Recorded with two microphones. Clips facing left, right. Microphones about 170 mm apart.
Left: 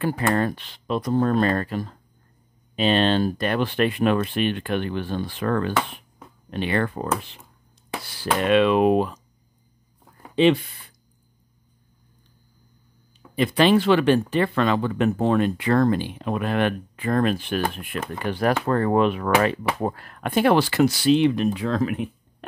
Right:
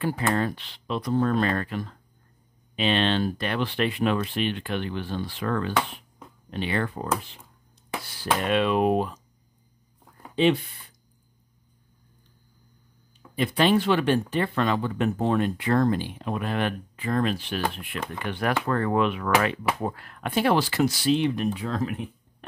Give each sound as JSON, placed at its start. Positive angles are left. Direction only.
{"t": 0.0, "sound": "speech", "side_deg": 55}
{"t": 8.2, "sound": "speech", "side_deg": 90}
{"t": 10.3, "sound": "speech", "side_deg": 90}
{"t": 13.4, "sound": "speech", "side_deg": 90}